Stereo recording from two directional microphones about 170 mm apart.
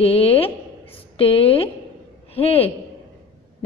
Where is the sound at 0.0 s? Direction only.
35° left (ahead or behind).